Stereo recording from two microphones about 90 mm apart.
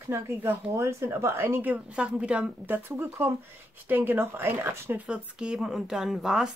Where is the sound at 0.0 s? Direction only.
30° right (ahead or behind); by 2.5 s 10° right (ahead or behind).